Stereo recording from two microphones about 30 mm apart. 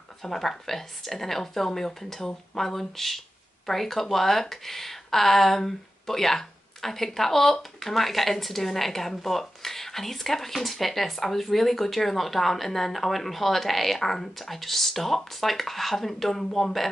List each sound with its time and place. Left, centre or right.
0.2 s speech: centre
16.3 s speech: centre